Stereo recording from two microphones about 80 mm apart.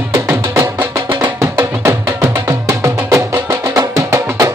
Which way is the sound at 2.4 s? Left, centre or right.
Right.